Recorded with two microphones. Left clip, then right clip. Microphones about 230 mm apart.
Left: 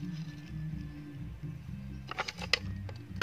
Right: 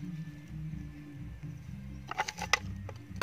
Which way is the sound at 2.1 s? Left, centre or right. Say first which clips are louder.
Right 2 dB; right.